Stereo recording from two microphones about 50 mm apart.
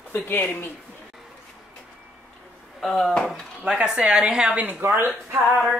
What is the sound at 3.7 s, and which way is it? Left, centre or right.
Speech, centre.